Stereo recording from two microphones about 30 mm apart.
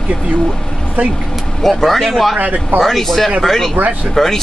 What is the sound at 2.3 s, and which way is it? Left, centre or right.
Speech, right.